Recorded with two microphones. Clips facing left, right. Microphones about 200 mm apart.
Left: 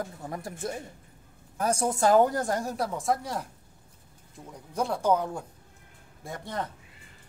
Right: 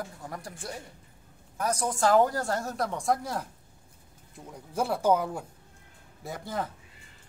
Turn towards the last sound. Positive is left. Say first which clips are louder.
# right 1 dB
turn(degrees=0)  # may be behind; listen again after turning